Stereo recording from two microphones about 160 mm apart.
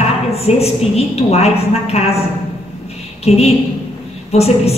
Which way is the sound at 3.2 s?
40° left (ahead or behind).